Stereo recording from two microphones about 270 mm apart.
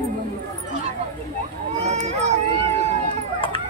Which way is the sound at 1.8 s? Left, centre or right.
Right.